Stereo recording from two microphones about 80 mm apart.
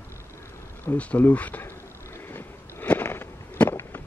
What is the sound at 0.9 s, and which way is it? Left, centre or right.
Speech, centre.